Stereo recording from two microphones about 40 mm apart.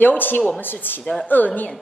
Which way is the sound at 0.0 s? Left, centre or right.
Left.